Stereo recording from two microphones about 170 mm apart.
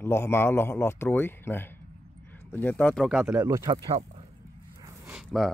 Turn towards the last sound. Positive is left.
turn(degrees=0)  # may be behind; listen again after turning